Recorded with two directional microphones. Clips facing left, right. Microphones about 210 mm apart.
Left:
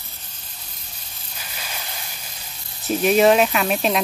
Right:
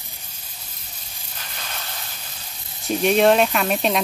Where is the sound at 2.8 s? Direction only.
5° left (ahead or behind).